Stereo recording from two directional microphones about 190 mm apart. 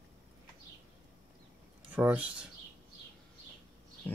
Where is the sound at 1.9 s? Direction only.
10° right (ahead or behind).